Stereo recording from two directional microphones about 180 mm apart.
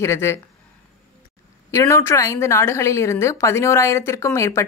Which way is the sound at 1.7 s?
15° left (ahead or behind).